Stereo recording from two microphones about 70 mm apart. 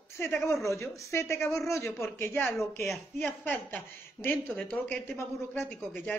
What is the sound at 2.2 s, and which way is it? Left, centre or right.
Speech, left.